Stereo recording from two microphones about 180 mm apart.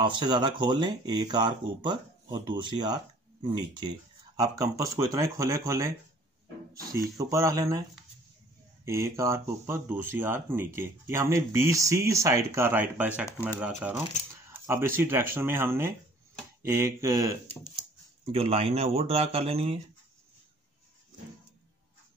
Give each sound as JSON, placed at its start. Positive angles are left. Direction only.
{"t": 0.0, "sound": "speech", "side_deg": -25}
{"t": 8.8, "sound": "speech", "side_deg": -15}
{"t": 18.2, "sound": "speech", "side_deg": -35}